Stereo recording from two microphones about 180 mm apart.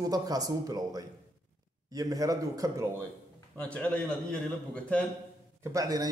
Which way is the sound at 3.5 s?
5° left (ahead or behind).